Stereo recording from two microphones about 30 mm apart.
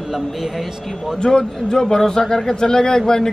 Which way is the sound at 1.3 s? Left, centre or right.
Centre.